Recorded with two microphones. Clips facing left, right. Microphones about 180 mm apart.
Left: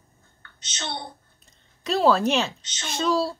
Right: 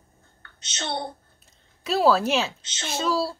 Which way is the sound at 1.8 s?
5° right (ahead or behind).